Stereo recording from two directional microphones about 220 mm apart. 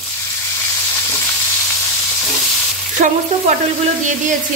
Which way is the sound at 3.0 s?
35° right (ahead or behind).